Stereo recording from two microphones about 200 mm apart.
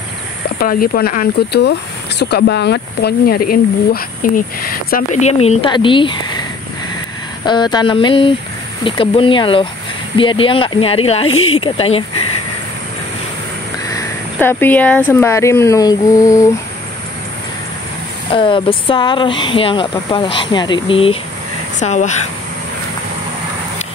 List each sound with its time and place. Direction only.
0.6 s speech: 45° left (ahead or behind)
4.9 s speech: 35° left (ahead or behind)
7.4 s speech: 20° left (ahead or behind)
13.8 s speech: 15° left (ahead or behind)
18.3 s speech: 25° left (ahead or behind)